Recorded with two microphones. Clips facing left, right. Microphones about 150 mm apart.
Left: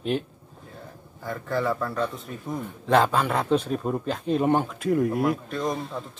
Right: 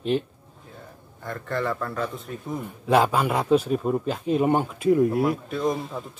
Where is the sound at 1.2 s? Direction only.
Centre (ahead or behind).